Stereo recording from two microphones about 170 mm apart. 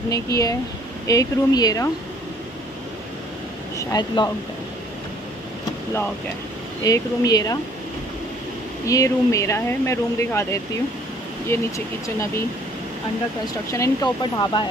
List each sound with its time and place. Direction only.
0.1 s speech: 20° left (ahead or behind)
3.7 s speech: 25° left (ahead or behind)
6.8 s speech: 20° left (ahead or behind)
8.8 s speech: 20° left (ahead or behind)
13.7 s speech: 20° left (ahead or behind)